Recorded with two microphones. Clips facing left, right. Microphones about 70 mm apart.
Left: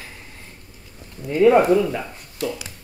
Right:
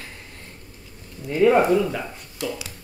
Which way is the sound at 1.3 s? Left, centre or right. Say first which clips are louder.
Left 2 dB; centre.